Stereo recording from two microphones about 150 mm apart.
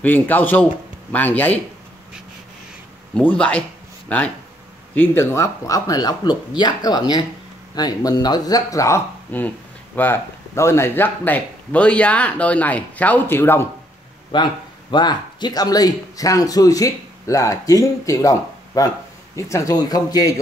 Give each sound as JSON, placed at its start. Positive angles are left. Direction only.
{"t": 0.0, "sound": "speech", "side_deg": 10}
{"t": 3.2, "sound": "speech", "side_deg": 10}
{"t": 14.3, "sound": "speech", "side_deg": 30}